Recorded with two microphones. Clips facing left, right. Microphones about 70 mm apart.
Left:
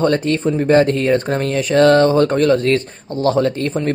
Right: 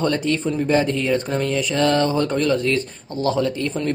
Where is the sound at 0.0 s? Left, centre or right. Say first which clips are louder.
Left 5 dB; left.